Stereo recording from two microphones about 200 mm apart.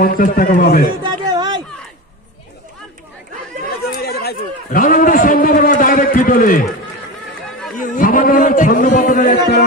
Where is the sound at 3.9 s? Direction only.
50° left (ahead or behind).